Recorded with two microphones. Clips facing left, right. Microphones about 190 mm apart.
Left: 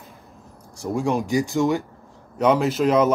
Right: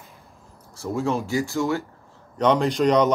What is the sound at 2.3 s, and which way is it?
Speech, 5° left (ahead or behind).